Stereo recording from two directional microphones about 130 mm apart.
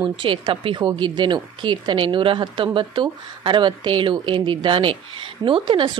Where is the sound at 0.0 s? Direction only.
40° right (ahead or behind).